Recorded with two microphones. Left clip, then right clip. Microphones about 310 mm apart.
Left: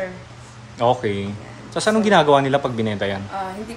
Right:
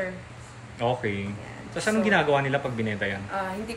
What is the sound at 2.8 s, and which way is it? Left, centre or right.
Speech, left.